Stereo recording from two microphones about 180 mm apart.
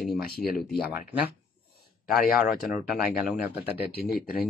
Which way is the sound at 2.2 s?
55° left (ahead or behind).